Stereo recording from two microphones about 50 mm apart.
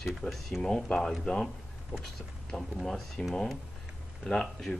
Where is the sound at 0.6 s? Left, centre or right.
Centre.